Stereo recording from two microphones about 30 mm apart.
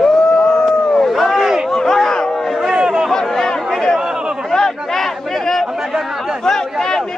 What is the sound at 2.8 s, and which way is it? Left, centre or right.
Chatter, right.